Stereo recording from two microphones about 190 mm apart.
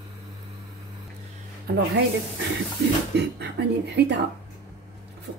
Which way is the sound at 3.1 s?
65° right (ahead or behind).